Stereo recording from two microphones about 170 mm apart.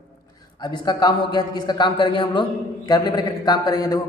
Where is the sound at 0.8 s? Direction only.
25° left (ahead or behind).